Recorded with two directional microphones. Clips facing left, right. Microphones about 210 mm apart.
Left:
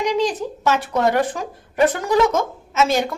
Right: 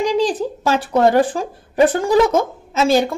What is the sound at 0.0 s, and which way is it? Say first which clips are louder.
A woman's voice: right 3 dB; 30° right (ahead or behind).